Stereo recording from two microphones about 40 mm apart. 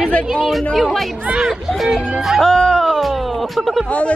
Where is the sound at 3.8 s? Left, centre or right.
Left.